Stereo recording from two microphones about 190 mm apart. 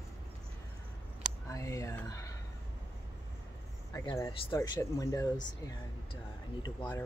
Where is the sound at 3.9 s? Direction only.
15° left (ahead or behind).